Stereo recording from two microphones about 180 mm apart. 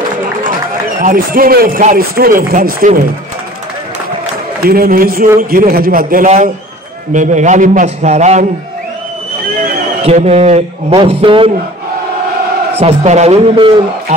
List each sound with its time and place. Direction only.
0.2 s run: 50° right (ahead or behind)
1.0 s a man's voice: 50° right (ahead or behind)
4.6 s a man's voice: 55° right (ahead or behind); by 8.5 s 40° right (ahead or behind)
10.0 s a man's voice: 35° right (ahead or behind)
12.8 s a man's voice: 40° right (ahead or behind)